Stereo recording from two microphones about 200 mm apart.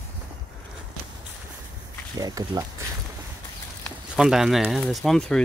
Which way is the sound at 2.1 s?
20° right (ahead or behind).